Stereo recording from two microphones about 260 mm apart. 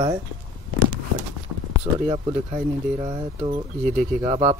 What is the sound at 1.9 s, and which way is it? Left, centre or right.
Speech, centre.